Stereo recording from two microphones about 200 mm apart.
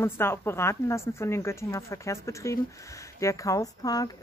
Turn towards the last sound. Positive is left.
turn(degrees=20)  # may be behind; listen again after turning